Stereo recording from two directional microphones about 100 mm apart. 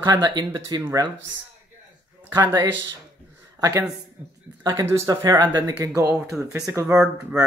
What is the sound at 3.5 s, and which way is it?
A man's voice, 30° right (ahead or behind).